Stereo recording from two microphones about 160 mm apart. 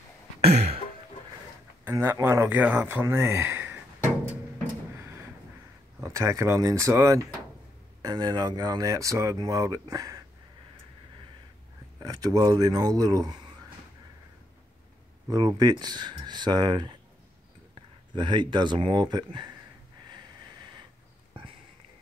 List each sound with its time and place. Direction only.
0.4 s a sound: 40° right (ahead or behind)
1.9 s speech: 15° right (ahead or behind)
4.9 s a sound: 20° right (ahead or behind)
5.9 s speech: 20° right (ahead or behind)
12.0 s speech: 25° right (ahead or behind)
15.2 s speech: 25° right (ahead or behind)